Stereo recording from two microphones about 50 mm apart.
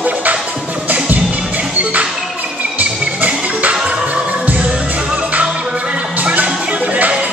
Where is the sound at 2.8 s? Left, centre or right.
Right.